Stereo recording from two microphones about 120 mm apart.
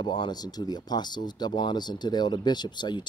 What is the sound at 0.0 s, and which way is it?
Speech, 35° left (ahead or behind).